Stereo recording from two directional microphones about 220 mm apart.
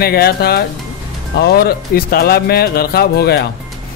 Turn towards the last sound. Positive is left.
turn(degrees=45)  # may be behind; listen again after turning